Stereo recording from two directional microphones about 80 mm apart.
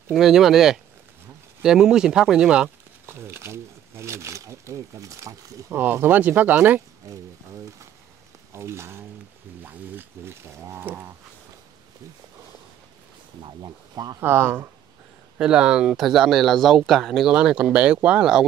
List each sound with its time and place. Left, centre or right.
0.1 s speech: centre
3.1 s speech: right
5.7 s speech: right
7.0 s speech: right
8.5 s speech: right
13.6 s speech: right
14.2 s speech: right
15.3 s speech: centre
17.3 s speech: centre